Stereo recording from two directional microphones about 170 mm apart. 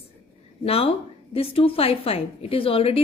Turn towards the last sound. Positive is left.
turn(degrees=35)  # may be behind; listen again after turning